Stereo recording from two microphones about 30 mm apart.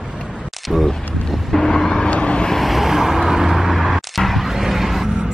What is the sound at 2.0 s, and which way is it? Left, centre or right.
Vehicle, left.